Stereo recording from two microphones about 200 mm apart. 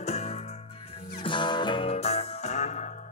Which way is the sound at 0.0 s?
35° left (ahead or behind).